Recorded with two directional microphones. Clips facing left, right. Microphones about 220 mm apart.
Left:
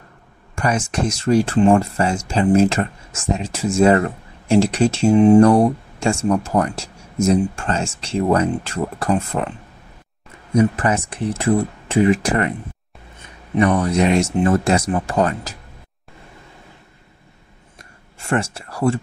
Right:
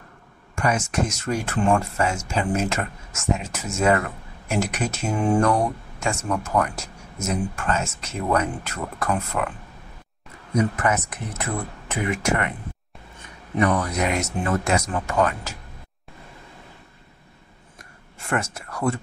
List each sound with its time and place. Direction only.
0.6 s speech: 30° left (ahead or behind)
10.5 s speech: 30° left (ahead or behind)
13.6 s speech: 30° left (ahead or behind)
18.3 s speech: 30° left (ahead or behind)